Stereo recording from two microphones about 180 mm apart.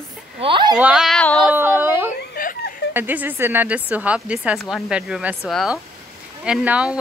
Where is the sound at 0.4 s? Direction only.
25° right (ahead or behind).